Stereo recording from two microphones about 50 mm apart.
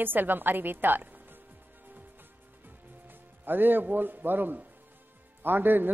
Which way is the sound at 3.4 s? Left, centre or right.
Right.